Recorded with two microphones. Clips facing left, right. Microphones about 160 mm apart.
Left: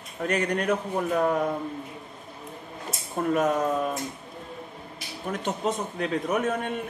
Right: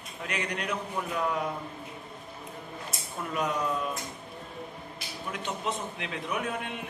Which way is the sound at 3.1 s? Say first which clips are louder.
Left 8 dB; 45° left (ahead or behind).